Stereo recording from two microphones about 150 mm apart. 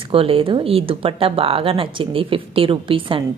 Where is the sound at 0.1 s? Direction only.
35° right (ahead or behind).